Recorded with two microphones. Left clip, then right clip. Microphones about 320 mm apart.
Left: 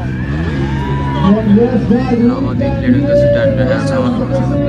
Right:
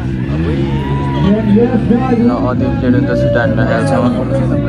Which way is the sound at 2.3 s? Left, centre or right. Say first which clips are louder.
Right 1 dB; centre.